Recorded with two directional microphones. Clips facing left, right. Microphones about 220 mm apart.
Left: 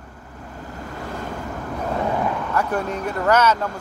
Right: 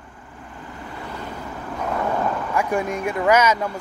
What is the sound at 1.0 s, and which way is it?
Waves, 45° left (ahead or behind).